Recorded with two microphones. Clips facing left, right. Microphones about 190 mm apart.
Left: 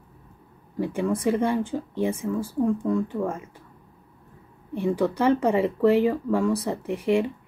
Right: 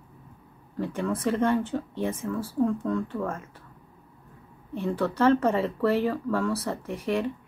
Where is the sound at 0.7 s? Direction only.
10° left (ahead or behind).